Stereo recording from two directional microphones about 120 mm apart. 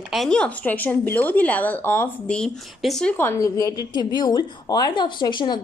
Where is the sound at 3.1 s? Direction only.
20° left (ahead or behind); by 5.5 s 40° left (ahead or behind).